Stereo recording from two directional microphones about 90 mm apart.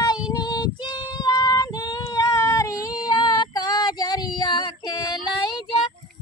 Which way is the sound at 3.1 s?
50° left (ahead or behind).